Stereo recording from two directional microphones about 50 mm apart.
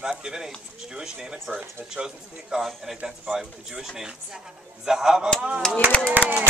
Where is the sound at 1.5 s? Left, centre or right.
Centre.